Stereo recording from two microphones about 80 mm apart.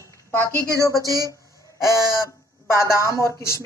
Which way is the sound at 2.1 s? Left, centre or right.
Left.